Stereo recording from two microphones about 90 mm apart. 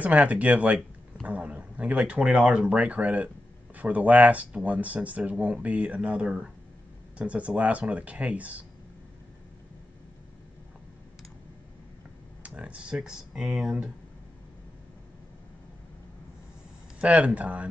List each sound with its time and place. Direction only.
0.0 s speech: 15° right (ahead or behind)
12.4 s speech: 15° right (ahead or behind)
17.0 s speech: 15° right (ahead or behind)